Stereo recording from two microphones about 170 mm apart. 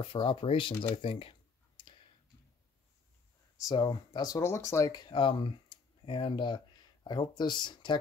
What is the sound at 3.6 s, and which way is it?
Speech, 25° left (ahead or behind).